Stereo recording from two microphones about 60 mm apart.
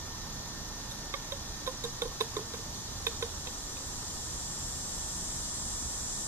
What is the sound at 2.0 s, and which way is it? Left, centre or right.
Knock, right.